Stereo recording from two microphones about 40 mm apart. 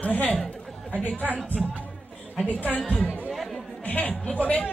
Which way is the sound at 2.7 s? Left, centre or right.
Left.